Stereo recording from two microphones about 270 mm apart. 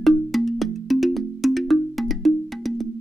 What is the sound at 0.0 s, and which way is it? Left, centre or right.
Music, centre.